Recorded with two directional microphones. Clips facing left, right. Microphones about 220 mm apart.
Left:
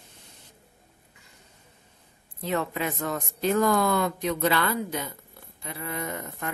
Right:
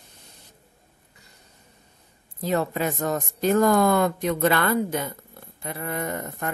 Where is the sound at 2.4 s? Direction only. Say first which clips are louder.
Right 4 dB; 40° right (ahead or behind).